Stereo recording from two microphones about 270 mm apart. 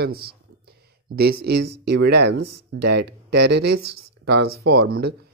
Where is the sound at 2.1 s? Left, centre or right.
Right.